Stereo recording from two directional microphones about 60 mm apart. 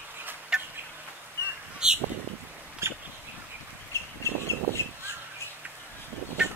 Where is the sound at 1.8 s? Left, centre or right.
Centre.